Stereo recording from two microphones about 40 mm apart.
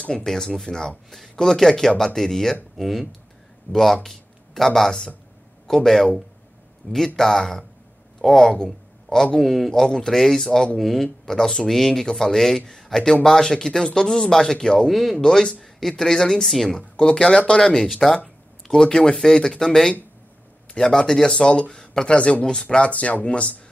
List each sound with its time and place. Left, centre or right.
0.0 s speech: left
0.3 s speech: centre
6.8 s speech: left
7.2 s speech: centre
9.1 s speech: left
9.4 s speech: centre
9.8 s speech: centre
14.9 s speech: centre
15.1 s a woman's voice: centre
18.0 s speech: centre
18.7 s speech: centre
22.2 s speech: left